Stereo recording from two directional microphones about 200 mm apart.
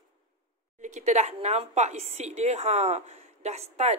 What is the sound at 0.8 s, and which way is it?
A woman's voice, 35° right (ahead or behind).